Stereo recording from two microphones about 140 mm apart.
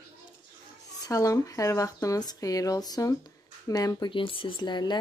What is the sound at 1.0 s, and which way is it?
Speech, 25° left (ahead or behind).